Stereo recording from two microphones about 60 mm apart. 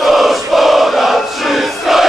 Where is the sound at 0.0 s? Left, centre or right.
Centre.